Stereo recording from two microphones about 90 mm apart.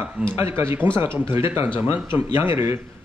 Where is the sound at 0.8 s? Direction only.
65° left (ahead or behind).